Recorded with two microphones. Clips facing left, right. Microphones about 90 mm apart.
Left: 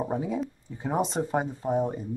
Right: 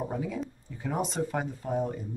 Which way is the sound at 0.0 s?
25° left (ahead or behind).